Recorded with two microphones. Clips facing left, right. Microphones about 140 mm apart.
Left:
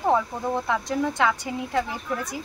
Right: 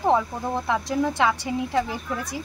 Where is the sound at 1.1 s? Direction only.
30° right (ahead or behind).